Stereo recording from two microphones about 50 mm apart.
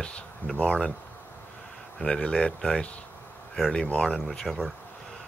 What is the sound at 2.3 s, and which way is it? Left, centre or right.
Speech, centre.